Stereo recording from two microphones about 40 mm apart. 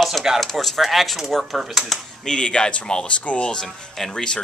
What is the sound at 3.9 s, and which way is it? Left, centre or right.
Speech, centre.